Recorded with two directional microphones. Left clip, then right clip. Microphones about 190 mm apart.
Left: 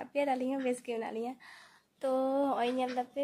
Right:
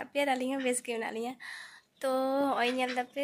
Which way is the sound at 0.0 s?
Centre (ahead or behind).